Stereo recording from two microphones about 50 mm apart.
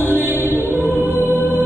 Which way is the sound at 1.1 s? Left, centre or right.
Right.